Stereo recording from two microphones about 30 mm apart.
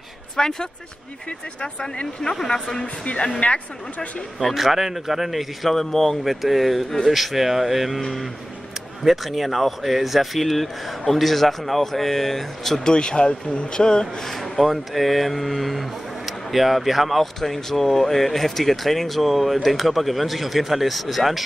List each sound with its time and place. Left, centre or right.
0.4 s speech: centre
2.2 s speech: left
3.3 s a woman's voice: left
4.6 s speech: centre
5.7 s speech: centre
6.2 s speech: centre
9.0 s speech: centre
12.8 s speech: left
14.6 s speech: centre
17.2 s speech: centre